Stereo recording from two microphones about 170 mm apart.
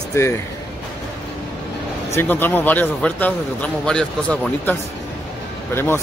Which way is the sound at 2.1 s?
10° left (ahead or behind).